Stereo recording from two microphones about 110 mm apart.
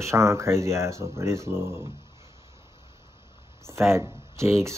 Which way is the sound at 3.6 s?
25° right (ahead or behind).